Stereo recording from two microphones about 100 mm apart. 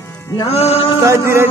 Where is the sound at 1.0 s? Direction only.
25° right (ahead or behind).